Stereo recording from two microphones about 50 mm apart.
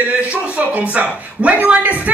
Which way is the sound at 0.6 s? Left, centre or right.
Right.